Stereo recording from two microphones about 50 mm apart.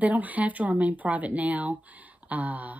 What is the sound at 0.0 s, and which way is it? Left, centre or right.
Speech, right.